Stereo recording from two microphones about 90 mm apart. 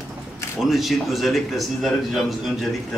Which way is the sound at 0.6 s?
Centre (ahead or behind).